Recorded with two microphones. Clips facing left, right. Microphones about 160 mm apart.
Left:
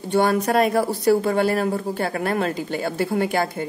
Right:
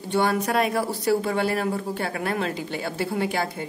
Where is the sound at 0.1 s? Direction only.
40° left (ahead or behind).